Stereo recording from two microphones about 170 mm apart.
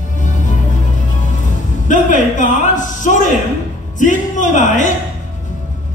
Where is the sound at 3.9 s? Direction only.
45° left (ahead or behind).